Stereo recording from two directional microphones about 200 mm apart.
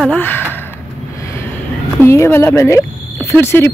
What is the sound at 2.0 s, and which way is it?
Speech, 10° left (ahead or behind).